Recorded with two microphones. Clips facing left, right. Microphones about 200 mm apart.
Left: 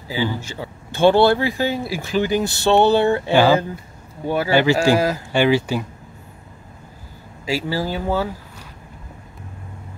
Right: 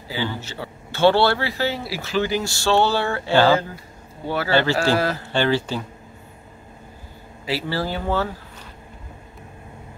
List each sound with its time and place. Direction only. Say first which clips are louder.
0.1 s speech: left 4 dB; 15° left (ahead or behind)
7.4 s speech: left 2 dB; 10° left (ahead or behind)